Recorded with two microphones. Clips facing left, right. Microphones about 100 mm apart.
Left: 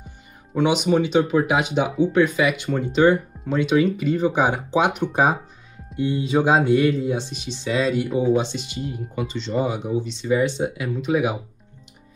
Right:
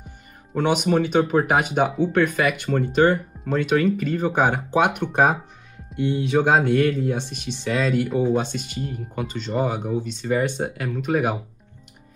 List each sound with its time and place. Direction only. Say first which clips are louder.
0.6 s speech: left 1 dB; 50° right (ahead or behind)